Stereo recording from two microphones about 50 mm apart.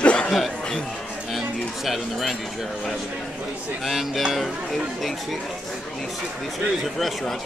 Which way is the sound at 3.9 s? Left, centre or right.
Centre.